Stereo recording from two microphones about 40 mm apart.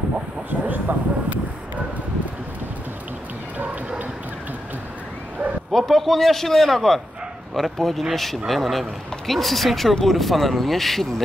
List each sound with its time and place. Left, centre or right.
0.5 s speech: right
5.7 s a man's voice: centre